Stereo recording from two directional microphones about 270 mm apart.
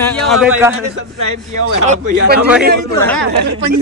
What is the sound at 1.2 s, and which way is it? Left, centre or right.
Speech, right.